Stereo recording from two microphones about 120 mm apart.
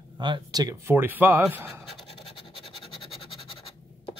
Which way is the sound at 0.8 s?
20° right (ahead or behind).